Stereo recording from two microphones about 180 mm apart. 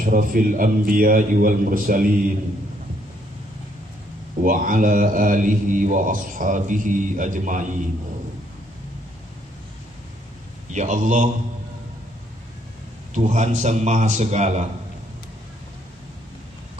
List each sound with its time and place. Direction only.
0.0 s a man's voice: 50° right (ahead or behind)
4.4 s a man's voice: 50° right (ahead or behind)
10.7 s a man's voice: 40° right (ahead or behind)
13.1 s a man's voice: 40° right (ahead or behind)